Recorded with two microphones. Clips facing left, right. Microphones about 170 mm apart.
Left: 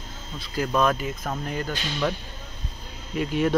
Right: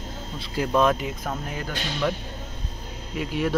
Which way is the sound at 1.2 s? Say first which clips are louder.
Left 2 dB; 5° right (ahead or behind).